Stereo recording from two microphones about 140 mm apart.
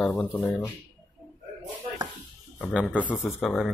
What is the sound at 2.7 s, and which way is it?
Speech, 5° right (ahead or behind).